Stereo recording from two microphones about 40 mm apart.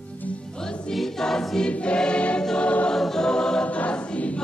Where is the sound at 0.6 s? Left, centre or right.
Centre.